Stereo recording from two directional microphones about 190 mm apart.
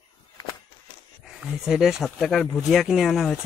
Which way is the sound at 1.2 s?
5° right (ahead or behind).